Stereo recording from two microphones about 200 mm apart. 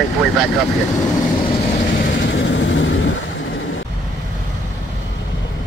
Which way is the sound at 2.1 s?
65° left (ahead or behind).